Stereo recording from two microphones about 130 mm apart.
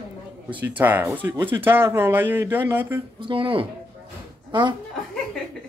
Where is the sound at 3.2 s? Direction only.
40° right (ahead or behind).